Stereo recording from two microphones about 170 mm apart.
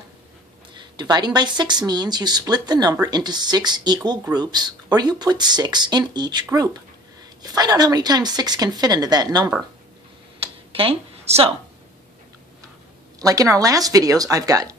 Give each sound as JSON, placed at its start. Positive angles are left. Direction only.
{"t": 0.7, "sound": "speech", "side_deg": -25}
{"t": 10.4, "sound": "a sound", "side_deg": -35}
{"t": 13.2, "sound": "speech", "side_deg": -20}